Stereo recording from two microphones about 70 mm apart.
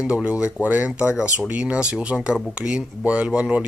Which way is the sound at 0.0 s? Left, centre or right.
Centre.